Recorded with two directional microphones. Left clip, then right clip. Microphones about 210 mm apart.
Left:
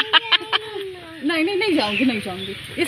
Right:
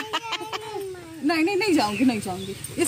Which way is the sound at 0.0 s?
10° right (ahead or behind).